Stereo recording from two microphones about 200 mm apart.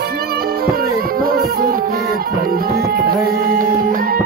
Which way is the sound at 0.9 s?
45° right (ahead or behind).